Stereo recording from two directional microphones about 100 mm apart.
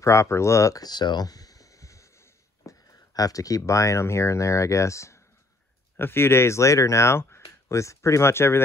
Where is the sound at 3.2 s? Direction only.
35° left (ahead or behind).